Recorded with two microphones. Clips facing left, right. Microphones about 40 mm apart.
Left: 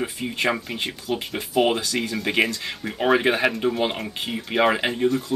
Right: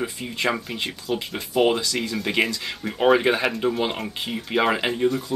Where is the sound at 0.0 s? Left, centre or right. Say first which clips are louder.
Left 1 dB; centre.